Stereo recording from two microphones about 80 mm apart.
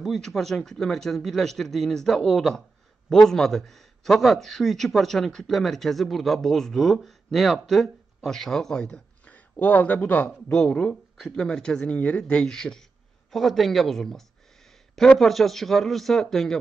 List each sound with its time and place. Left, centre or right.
0.0 s speech: centre
9.3 s speech: left; by 16.5 s centre